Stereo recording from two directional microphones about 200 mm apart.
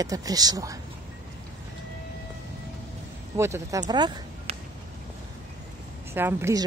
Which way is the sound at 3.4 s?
15° right (ahead or behind).